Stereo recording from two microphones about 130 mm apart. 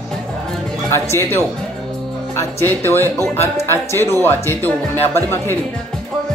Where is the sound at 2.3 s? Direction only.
15° left (ahead or behind).